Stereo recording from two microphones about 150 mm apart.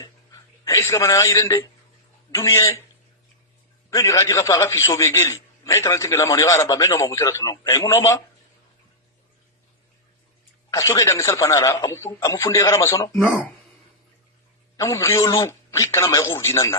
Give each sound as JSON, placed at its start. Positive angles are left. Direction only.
{"t": 0.0, "sound": "a sound", "side_deg": 20}
{"t": 2.3, "sound": "a man's voice", "side_deg": 20}
{"t": 3.9, "sound": "a man's voice", "side_deg": 20}
{"t": 10.7, "sound": "a man's voice", "side_deg": 20}
{"t": 14.8, "sound": "a man's voice", "side_deg": 20}